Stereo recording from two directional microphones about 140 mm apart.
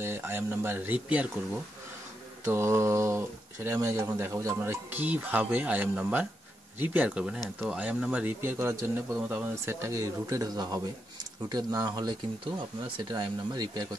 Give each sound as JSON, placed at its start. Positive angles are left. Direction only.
{"t": 0.0, "sound": "speech", "side_deg": -15}
{"t": 2.4, "sound": "speech", "side_deg": -20}